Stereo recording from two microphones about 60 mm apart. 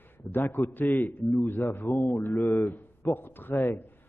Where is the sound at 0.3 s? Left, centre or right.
Left.